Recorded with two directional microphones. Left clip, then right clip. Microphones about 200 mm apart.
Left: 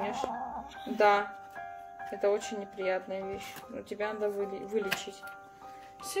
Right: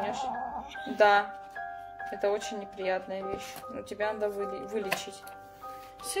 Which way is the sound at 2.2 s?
10° left (ahead or behind).